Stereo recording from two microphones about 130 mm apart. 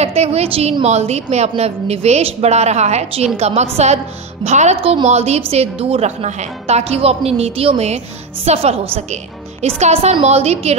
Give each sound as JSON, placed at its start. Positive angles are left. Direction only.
{"t": 0.0, "sound": "a woman's voice", "side_deg": -55}